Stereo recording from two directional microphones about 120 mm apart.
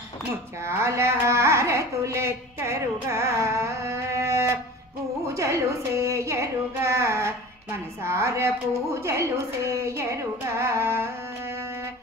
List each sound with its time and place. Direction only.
0.6 s carnatic music: 20° right (ahead or behind)
5.3 s a woman's voice: 25° right (ahead or behind)